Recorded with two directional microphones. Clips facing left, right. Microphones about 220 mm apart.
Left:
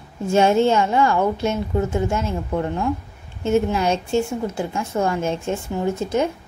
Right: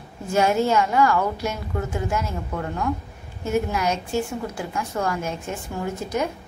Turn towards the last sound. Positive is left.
turn(degrees=25)  # may be behind; listen again after turning